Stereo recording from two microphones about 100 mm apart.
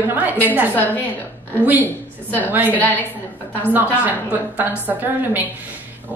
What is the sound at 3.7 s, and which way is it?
A woman's voice, 15° right (ahead or behind).